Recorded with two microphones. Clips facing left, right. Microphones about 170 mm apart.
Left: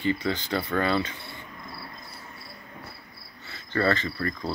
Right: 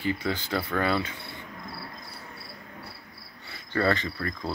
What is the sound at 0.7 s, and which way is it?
Speech, 5° right (ahead or behind).